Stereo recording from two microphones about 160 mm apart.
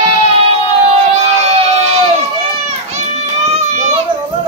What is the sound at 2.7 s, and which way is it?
Children playing, 45° right (ahead or behind).